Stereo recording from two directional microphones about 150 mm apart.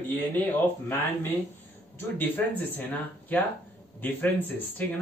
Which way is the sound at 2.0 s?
10° left (ahead or behind).